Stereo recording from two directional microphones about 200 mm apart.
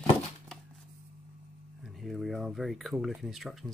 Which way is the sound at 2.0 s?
Centre (ahead or behind).